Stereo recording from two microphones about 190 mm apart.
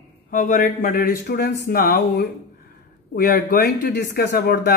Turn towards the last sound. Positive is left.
turn(degrees=55)  # may be behind; listen again after turning